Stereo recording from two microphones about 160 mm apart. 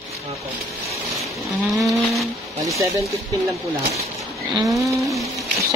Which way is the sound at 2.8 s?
20° right (ahead or behind).